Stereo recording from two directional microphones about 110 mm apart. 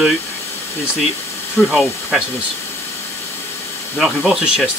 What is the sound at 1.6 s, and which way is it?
Speech, 15° left (ahead or behind).